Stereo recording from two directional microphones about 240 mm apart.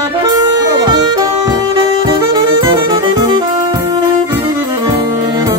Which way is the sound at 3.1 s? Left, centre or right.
Centre.